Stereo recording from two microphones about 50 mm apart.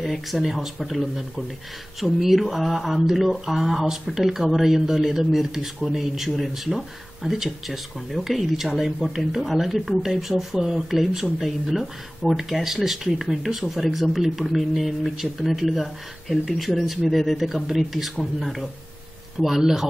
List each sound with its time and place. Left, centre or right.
0.0 s speech: centre